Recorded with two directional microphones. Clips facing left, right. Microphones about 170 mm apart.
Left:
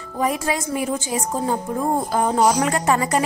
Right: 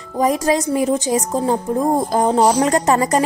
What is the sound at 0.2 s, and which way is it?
A woman's voice, 35° right (ahead or behind).